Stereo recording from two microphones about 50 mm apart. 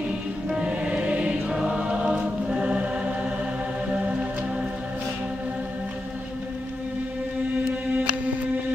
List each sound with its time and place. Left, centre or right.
0.5 s music: right
1.6 s choir: centre